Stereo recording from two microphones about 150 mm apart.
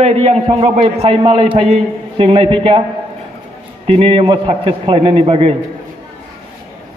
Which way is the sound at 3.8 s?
40° right (ahead or behind).